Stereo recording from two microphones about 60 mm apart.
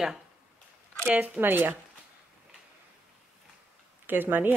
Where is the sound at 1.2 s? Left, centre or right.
Right.